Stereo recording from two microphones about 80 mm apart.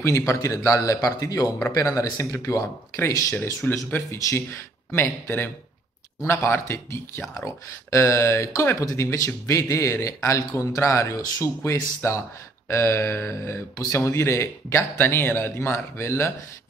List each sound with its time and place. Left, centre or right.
0.0 s speech: left
3.3 s speech: left